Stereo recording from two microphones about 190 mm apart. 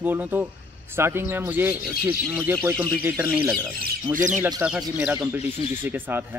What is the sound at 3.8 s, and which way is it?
Speech, 45° right (ahead or behind).